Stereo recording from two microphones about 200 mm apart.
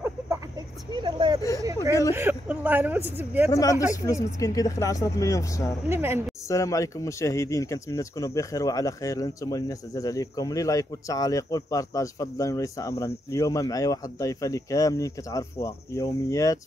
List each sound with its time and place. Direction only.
0.9 s speech: 25° right (ahead or behind)
3.9 s speech: 15° left (ahead or behind)
5.9 s speech: 10° right (ahead or behind)
6.5 s speech: 15° left (ahead or behind)